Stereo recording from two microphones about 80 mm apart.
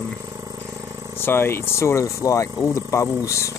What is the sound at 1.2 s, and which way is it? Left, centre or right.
Speech, left.